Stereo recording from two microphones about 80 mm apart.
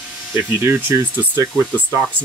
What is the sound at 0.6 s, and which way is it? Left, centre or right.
Speech, right.